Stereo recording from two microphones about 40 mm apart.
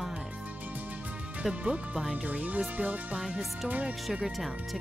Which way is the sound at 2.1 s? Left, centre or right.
Right.